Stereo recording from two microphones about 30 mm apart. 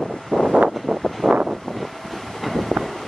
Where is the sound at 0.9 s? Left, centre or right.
Left.